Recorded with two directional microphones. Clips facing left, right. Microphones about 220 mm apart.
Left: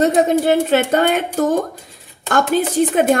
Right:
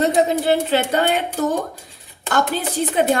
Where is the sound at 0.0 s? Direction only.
50° left (ahead or behind).